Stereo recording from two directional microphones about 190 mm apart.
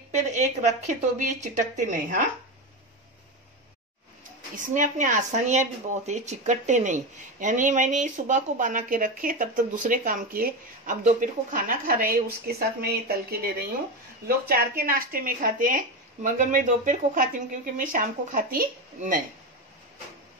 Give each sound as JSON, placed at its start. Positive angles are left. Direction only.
{"t": 0.1, "sound": "speech", "side_deg": -40}
{"t": 4.6, "sound": "a woman's voice", "side_deg": -40}